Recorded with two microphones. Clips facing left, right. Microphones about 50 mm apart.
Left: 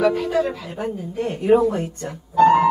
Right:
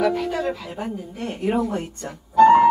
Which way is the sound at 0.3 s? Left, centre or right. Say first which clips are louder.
Left 4 dB; centre.